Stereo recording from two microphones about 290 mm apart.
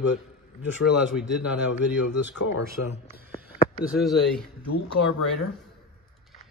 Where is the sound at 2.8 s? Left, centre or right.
Left.